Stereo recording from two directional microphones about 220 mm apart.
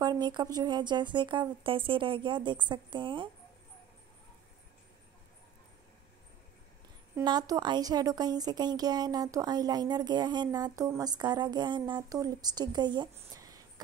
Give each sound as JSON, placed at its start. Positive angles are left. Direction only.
{"t": 0.0, "sound": "speech", "side_deg": -20}
{"t": 7.2, "sound": "a woman's voice", "side_deg": -15}